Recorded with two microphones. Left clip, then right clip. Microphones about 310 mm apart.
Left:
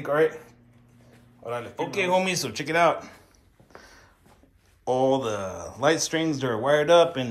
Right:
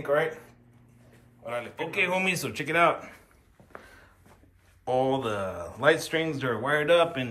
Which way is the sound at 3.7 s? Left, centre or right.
Centre.